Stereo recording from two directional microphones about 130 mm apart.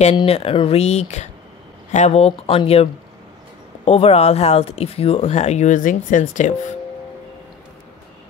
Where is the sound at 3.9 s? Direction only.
50° left (ahead or behind); by 6.6 s 80° left.